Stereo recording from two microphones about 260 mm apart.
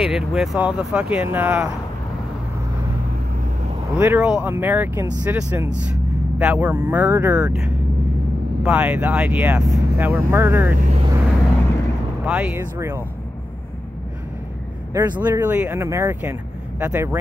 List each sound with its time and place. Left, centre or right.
0.0 s speech: centre
4.0 s speech: centre
10.8 s speech: right
12.3 s speech: centre
15.0 s speech: centre